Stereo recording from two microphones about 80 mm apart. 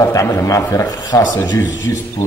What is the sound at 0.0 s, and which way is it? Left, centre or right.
A man's voice, left.